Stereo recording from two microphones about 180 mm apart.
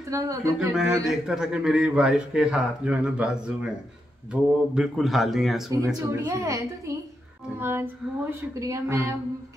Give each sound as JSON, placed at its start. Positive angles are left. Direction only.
{"t": 0.1, "sound": "speech", "side_deg": -15}
{"t": 0.7, "sound": "a man's voice", "side_deg": -5}
{"t": 5.9, "sound": "speech", "side_deg": -15}